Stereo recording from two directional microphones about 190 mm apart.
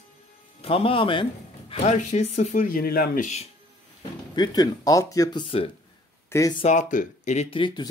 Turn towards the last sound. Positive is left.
turn(degrees=25)  # may be behind; listen again after turning